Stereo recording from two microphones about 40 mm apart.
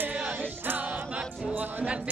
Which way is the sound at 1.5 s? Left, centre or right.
Right.